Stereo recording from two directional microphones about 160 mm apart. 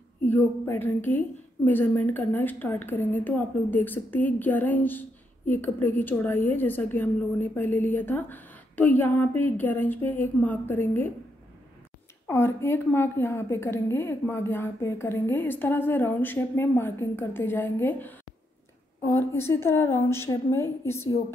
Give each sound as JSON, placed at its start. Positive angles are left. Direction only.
{"t": 0.3, "sound": "a woman's voice", "side_deg": 10}
{"t": 12.3, "sound": "a woman's voice", "side_deg": 15}